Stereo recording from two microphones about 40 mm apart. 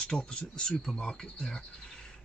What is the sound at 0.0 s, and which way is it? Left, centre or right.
Speech, left.